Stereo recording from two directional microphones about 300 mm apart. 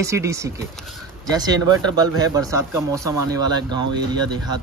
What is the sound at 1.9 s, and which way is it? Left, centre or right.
Speech, centre.